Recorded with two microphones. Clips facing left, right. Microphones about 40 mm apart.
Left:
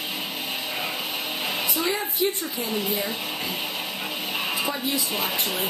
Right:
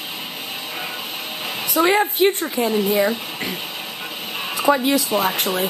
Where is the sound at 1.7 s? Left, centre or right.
Right.